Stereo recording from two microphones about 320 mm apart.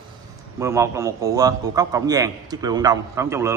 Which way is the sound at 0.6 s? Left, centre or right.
Centre.